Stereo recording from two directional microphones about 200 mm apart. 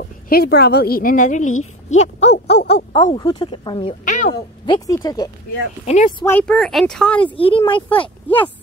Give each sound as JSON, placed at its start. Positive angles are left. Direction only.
{"t": 0.3, "sound": "a woman's voice", "side_deg": 50}
{"t": 2.7, "sound": "speech", "side_deg": 20}
{"t": 4.0, "sound": "a sound", "side_deg": 40}
{"t": 4.3, "sound": "speech", "side_deg": 20}
{"t": 5.9, "sound": "speech", "side_deg": 30}
{"t": 6.2, "sound": "speech", "side_deg": 5}
{"t": 7.3, "sound": "speech", "side_deg": 25}